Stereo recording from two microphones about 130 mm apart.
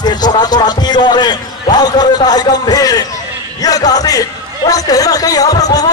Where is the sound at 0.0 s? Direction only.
35° left (ahead or behind).